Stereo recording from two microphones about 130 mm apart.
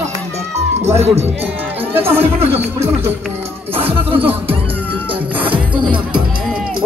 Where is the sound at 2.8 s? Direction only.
15° right (ahead or behind).